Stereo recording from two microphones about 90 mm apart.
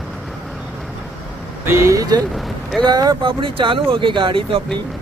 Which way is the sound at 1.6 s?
30° right (ahead or behind).